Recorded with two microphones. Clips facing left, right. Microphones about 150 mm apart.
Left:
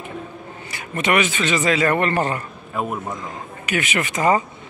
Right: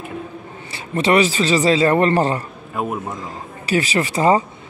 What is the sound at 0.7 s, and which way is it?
A man's voice, 30° right (ahead or behind).